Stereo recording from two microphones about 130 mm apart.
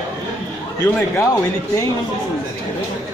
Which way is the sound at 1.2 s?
25° left (ahead or behind).